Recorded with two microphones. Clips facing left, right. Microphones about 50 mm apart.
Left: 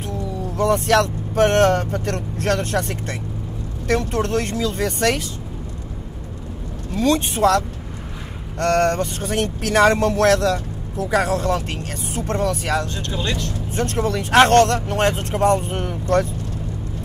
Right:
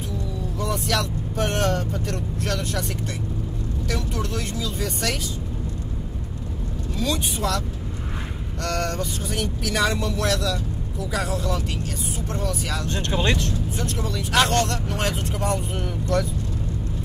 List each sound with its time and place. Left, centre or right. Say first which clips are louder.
0.1 s speech: left 4 dB; left
6.9 s speech: left 7 dB; left
12.9 s speech: right 2 dB; right
13.7 s speech: left 6 dB; left